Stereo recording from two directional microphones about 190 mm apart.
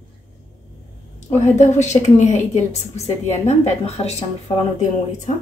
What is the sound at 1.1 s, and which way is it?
A woman's voice, 40° left (ahead or behind).